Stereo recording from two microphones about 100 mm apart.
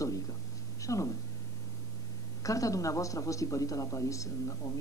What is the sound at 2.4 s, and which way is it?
A man's voice, 35° left (ahead or behind).